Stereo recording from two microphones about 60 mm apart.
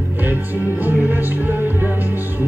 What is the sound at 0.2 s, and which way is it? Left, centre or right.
Music, right.